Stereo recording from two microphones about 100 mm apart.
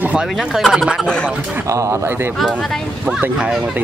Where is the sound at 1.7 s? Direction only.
30° right (ahead or behind).